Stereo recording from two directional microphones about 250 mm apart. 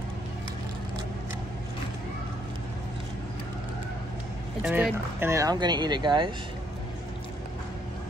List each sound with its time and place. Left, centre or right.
4.6 s speech: centre